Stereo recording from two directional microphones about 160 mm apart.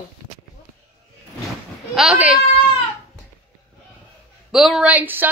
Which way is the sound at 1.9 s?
5° right (ahead or behind).